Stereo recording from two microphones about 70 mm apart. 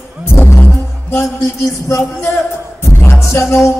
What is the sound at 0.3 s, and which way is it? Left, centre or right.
Music, left.